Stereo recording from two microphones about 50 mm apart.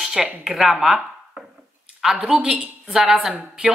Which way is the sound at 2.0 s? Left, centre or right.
Centre.